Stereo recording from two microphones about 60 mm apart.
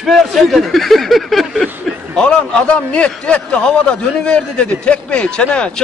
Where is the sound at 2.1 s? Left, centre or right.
Centre.